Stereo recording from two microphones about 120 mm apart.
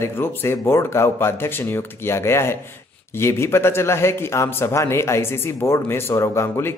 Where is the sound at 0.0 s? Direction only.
20° left (ahead or behind).